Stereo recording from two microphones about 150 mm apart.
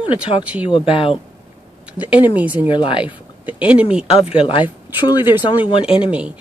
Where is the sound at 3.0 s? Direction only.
10° right (ahead or behind).